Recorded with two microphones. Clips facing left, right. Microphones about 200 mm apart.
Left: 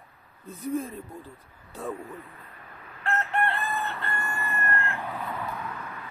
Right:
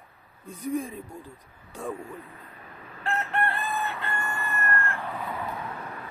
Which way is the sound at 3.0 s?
15° right (ahead or behind).